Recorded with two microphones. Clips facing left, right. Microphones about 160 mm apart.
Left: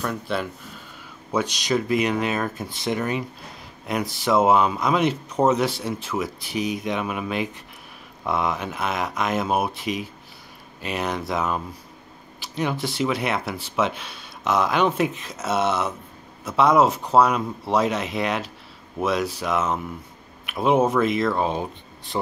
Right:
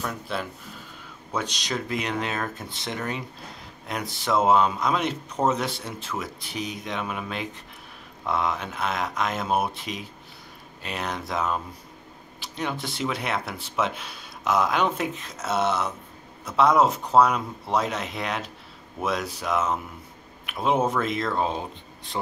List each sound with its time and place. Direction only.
0.0 s speech: centre (ahead or behind)